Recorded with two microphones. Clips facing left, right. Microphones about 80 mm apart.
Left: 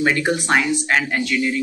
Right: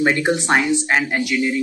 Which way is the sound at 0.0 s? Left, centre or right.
Right.